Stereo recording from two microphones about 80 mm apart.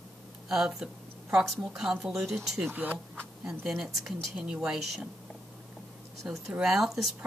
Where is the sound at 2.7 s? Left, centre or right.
Right.